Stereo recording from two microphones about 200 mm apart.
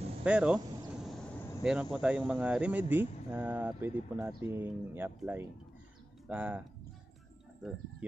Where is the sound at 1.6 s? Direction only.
5° right (ahead or behind).